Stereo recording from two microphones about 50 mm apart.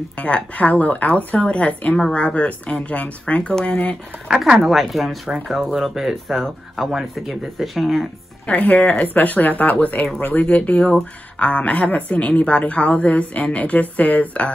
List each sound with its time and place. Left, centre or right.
0.2 s a woman's voice: left
2.0 s a woman's voice: centre
4.3 s speech: centre
8.5 s a woman's voice: left